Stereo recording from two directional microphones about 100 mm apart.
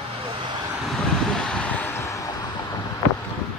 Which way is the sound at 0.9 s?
5° left (ahead or behind).